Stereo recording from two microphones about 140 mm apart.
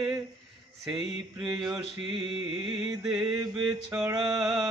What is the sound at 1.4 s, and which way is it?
Mantra, 30° right (ahead or behind).